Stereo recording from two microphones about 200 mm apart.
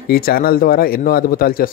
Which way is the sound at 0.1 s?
50° left (ahead or behind).